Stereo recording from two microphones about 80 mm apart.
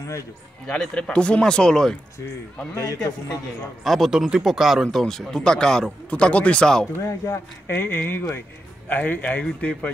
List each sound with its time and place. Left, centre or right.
0.7 s speech: centre
2.7 s a man's voice: left
3.8 s speech: centre
7.2 s speech: left; by 9.8 s centre